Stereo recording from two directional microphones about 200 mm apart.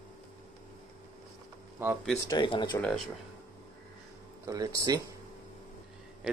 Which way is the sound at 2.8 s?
5° left (ahead or behind).